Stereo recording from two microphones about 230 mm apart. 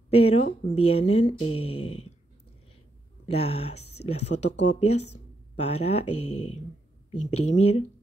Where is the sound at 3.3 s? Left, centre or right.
Left.